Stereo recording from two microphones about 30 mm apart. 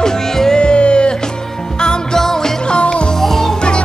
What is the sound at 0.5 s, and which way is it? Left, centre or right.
Music, left.